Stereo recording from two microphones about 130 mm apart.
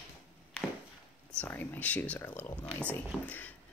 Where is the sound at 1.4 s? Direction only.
15° left (ahead or behind).